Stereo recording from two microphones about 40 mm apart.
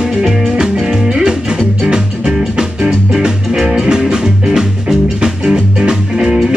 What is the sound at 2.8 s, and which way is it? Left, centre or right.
Music, right.